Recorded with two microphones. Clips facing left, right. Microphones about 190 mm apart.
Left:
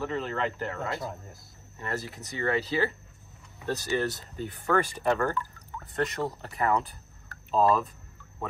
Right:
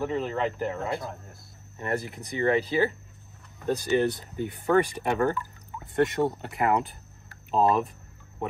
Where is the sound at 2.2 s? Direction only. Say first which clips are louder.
Right 4 dB; 30° right (ahead or behind).